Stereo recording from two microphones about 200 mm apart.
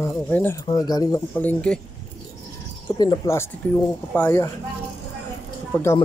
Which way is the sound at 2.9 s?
20° left (ahead or behind).